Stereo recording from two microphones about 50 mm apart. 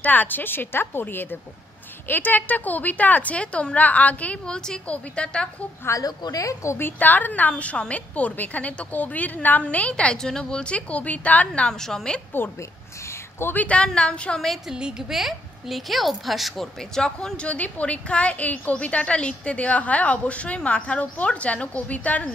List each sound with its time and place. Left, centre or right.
0.0 s a woman's voice: left; by 5.5 s centre
5.9 s a woman's voice: left
6.8 s a woman's voice: left
10.1 s a woman's voice: centre; by 11.7 s left
11.7 s speech: centre
12.4 s a woman's voice: left
13.6 s a woman's voice: left
14.7 s a woman's voice: centre
15.0 s speech: centre
16.9 s speech: centre
17.5 s a woman's voice: left